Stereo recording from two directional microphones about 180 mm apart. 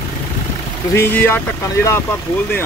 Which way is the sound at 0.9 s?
10° left (ahead or behind).